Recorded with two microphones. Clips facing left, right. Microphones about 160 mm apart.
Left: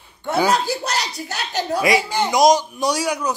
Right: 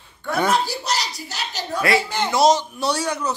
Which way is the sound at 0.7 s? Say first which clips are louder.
Left 2 dB; 60° left (ahead or behind).